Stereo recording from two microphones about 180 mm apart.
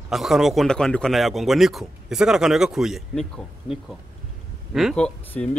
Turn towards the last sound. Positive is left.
turn(degrees=5)  # may be behind; listen again after turning